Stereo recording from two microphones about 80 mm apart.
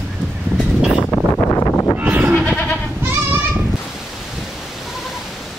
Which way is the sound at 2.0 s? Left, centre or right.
Right.